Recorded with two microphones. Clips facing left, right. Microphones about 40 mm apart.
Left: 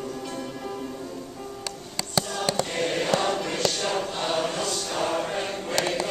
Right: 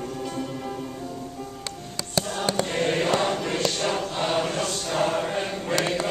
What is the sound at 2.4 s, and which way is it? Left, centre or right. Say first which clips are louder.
Choir: right 3 dB; centre.